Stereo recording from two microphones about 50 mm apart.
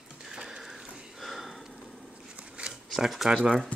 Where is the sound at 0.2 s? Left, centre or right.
Centre.